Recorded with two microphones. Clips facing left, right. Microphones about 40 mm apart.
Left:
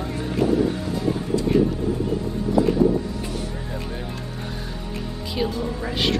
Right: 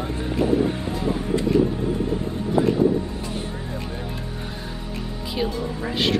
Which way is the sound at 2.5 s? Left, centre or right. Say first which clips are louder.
Even; right.